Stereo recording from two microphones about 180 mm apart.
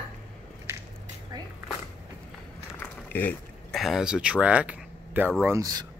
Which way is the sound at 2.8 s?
10° left (ahead or behind).